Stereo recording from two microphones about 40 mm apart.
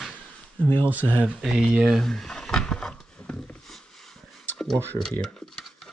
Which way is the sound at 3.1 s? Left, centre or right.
Left.